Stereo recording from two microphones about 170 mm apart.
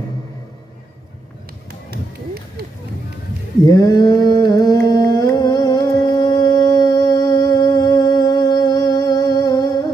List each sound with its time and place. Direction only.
1.7 s run: 70° right (ahead or behind)
3.6 s mantra: 20° left (ahead or behind)